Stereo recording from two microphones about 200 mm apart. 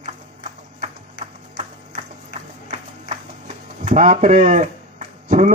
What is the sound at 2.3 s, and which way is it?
Music, 55° left (ahead or behind).